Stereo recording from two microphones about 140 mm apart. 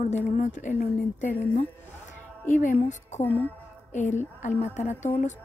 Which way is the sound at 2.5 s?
65° left (ahead or behind).